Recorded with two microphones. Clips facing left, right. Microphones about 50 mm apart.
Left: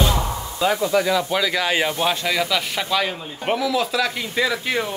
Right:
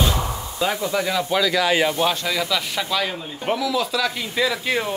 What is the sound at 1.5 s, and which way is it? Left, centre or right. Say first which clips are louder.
Speech: right 2 dB; left.